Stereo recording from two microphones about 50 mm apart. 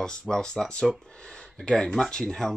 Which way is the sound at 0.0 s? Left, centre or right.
Centre.